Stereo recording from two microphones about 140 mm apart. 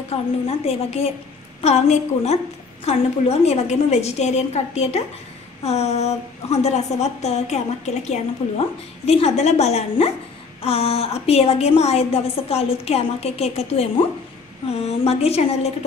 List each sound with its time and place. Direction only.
0.1 s a woman's voice: 45° left (ahead or behind)